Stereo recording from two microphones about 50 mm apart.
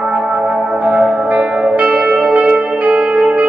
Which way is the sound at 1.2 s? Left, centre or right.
Right.